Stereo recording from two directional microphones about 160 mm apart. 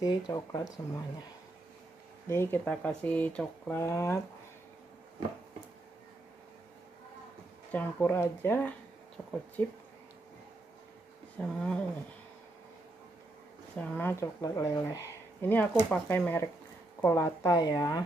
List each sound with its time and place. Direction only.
0.0 s speech: 25° left (ahead or behind)
2.2 s speech: 15° left (ahead or behind)
7.7 s speech: 15° left (ahead or behind)
11.3 s speech: 5° left (ahead or behind)
13.7 s speech: 10° left (ahead or behind)